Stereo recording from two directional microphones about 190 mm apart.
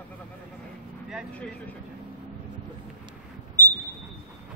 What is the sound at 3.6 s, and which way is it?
Smoke detector, 10° left (ahead or behind).